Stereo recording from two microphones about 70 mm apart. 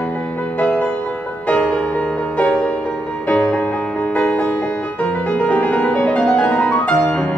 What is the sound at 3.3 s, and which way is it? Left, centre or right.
Music, left.